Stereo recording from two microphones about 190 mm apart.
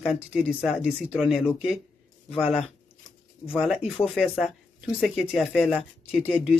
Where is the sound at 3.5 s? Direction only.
Centre (ahead or behind).